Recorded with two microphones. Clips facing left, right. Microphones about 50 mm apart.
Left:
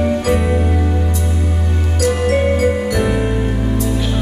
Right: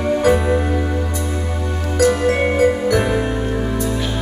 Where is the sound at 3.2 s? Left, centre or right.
Centre.